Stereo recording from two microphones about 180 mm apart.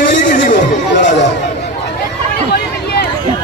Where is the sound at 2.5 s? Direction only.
65° left (ahead or behind).